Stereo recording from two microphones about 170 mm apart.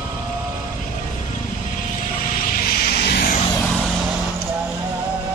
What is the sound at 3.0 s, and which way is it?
Vehicle, 65° left (ahead or behind).